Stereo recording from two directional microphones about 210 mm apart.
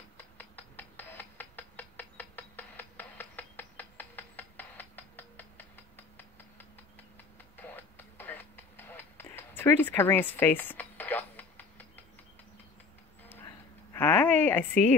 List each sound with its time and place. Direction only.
0.4 s music: 10° left (ahead or behind)
7.5 s music: 10° left (ahead or behind)
13.9 s a sound: 10° left (ahead or behind)